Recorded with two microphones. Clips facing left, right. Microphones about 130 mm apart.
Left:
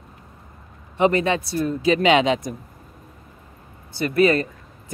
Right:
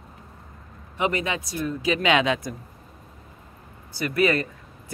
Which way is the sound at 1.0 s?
35° left (ahead or behind).